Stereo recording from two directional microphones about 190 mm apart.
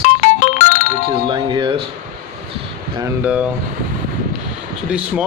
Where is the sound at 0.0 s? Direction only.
40° left (ahead or behind).